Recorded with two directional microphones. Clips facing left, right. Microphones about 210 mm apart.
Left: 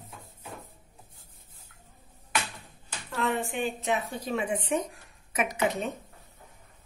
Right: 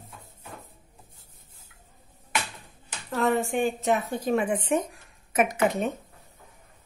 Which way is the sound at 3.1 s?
45° right (ahead or behind).